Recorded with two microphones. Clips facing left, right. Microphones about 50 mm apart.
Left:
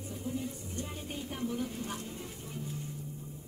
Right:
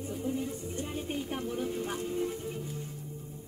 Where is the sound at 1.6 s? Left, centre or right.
Centre.